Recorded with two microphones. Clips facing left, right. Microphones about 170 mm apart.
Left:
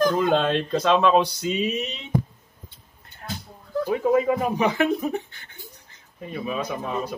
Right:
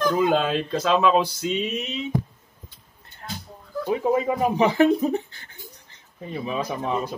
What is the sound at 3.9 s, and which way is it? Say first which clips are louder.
Speech: left 1 dB; 25° right (ahead or behind).